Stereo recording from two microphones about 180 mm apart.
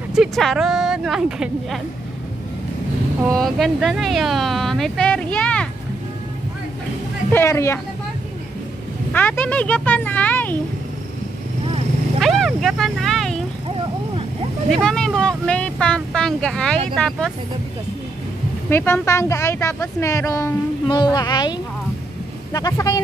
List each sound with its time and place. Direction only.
0.1 s speech: centre (ahead or behind)
3.3 s speech: centre (ahead or behind)
7.3 s speech: 15° left (ahead or behind)
9.1 s speech: 10° left (ahead or behind)
12.2 s vehicle: centre (ahead or behind)
14.7 s speech: 5° left (ahead or behind)
18.7 s speech: 15° left (ahead or behind)